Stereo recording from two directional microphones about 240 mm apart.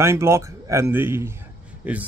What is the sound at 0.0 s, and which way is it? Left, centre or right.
Speech, centre.